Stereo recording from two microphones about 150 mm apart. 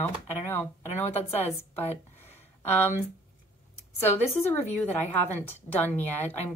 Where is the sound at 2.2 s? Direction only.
15° left (ahead or behind).